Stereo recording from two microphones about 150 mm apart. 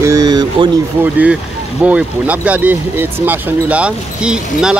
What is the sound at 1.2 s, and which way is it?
Speech, 10° right (ahead or behind).